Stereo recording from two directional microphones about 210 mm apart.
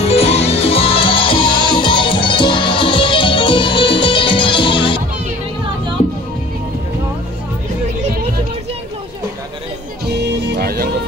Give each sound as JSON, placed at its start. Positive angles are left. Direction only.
{"t": 0.0, "sound": "music", "side_deg": 30}
{"t": 10.0, "sound": "music", "side_deg": -50}